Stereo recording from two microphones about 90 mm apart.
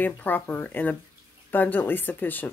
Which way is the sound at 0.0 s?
20° left (ahead or behind).